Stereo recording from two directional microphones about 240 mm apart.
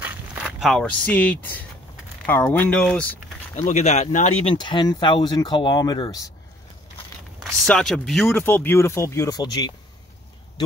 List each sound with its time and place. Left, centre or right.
0.0 s a sound: centre
2.2 s speech: centre
3.5 s speech: left
7.6 s speech: centre